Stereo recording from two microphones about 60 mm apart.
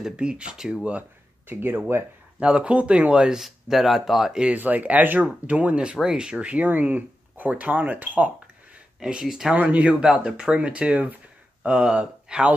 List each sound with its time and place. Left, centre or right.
0.1 s speech: centre
1.5 s speech: right
2.4 s speech: centre
4.6 s speech: right
9.0 s speech: centre
9.5 s speech: right
10.0 s speech: centre